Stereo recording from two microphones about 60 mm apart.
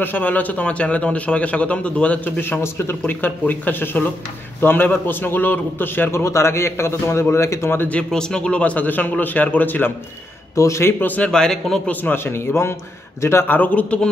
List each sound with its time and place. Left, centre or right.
0.0 s a man's voice: left
6.1 s a man's voice: left
8.1 s a man's voice: centre; by 9.9 s left
10.5 s a man's voice: left
10.9 s a man's voice: left
11.2 s a man's voice: centre
11.9 s a man's voice: left
13.5 s a man's voice: left